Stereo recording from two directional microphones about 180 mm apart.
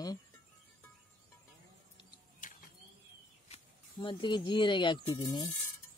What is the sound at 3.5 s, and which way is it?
Speech, 25° left (ahead or behind).